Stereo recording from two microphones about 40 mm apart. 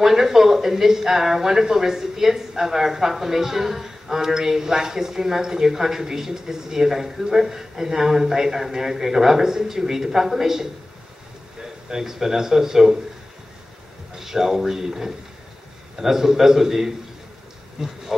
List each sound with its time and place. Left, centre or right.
0.0 s a man's voice: centre
14.1 s speech: centre
17.7 s pig: centre